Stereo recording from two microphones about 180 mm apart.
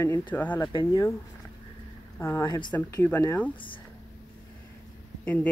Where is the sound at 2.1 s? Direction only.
15° left (ahead or behind).